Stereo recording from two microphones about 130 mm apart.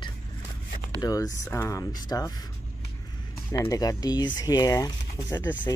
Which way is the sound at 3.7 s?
30° left (ahead or behind).